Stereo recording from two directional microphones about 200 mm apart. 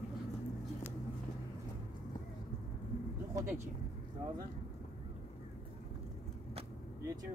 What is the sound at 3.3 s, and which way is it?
Speech, 15° right (ahead or behind).